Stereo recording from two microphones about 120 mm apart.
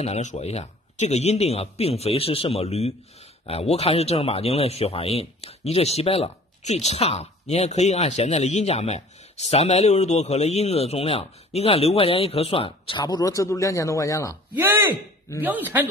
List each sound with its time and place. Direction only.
0.0 s speech: 75° left (ahead or behind); by 13.0 s 50° left (ahead or behind)
13.0 s a man's voice: 30° left (ahead or behind)
14.5 s speech: 20° right (ahead or behind)